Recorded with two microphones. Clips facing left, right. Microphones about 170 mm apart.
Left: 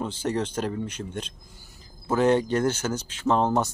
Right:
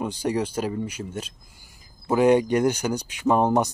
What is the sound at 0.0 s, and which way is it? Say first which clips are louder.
Speech: right 2 dB; 10° right (ahead or behind).